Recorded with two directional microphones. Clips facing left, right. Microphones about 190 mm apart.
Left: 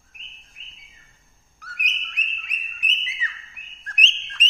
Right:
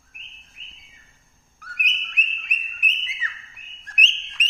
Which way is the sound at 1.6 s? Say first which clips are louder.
Right 1 dB; 55° right (ahead or behind).